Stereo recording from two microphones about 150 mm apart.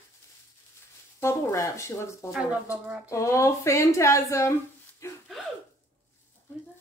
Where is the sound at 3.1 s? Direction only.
20° left (ahead or behind).